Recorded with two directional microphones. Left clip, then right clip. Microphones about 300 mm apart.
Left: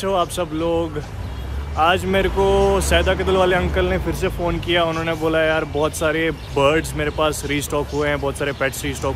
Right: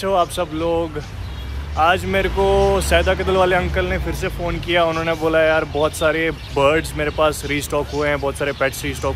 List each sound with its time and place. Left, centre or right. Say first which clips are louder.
0.0 s speech: right 2 dB; centre